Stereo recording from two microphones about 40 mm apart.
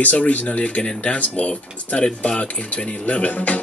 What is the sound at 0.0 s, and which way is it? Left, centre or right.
Music, left.